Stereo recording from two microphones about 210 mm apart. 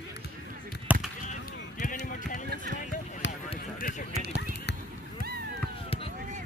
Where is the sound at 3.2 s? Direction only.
60° left (ahead or behind).